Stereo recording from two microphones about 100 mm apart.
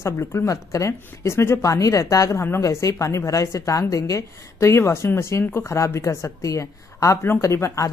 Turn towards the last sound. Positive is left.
turn(degrees=30)  # may be behind; listen again after turning